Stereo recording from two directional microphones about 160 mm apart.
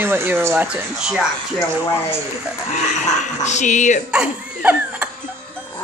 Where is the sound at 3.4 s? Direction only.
45° left (ahead or behind).